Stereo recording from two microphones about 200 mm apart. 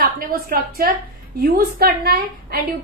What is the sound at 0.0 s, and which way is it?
A woman's voice, 50° right (ahead or behind).